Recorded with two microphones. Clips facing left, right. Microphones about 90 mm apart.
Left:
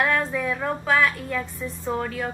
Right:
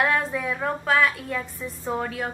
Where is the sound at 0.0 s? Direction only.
5° right (ahead or behind).